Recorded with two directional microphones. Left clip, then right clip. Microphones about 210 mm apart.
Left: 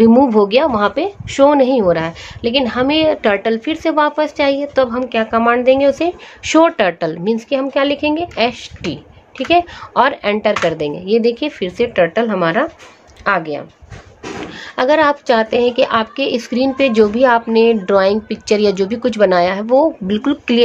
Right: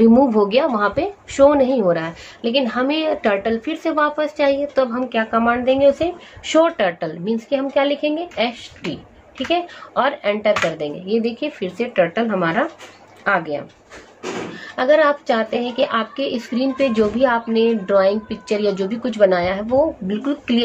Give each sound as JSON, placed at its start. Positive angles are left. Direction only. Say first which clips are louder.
{"t": 0.0, "sound": "a woman's voice", "louder": "left 4 dB", "side_deg": 35}